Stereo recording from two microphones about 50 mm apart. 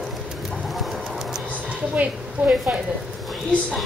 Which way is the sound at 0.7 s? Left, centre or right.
Centre.